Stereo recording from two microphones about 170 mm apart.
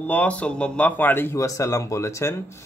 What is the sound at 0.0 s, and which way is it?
Speech, 10° left (ahead or behind).